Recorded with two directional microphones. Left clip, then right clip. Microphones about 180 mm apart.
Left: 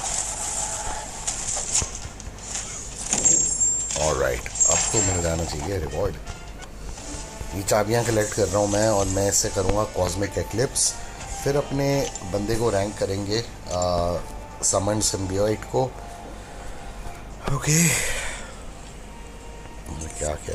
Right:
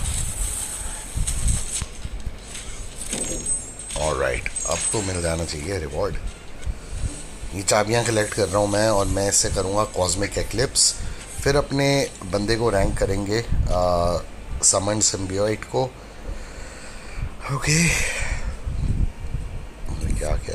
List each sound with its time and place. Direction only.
0.0 s vehicle: 25° right (ahead or behind)
3.1 s keys jangling: 5° right (ahead or behind)
4.7 s a sound: 25° right (ahead or behind)
5.1 s speech: 5° right (ahead or behind)
5.4 s speech: 25° right (ahead or behind)
6.0 s speech: 5° right (ahead or behind)
7.5 s speech: centre (ahead or behind)
11.7 s speech: 15° right (ahead or behind)
14.7 s speech: centre (ahead or behind)
17.6 s speech: centre (ahead or behind)
20.2 s music: centre (ahead or behind)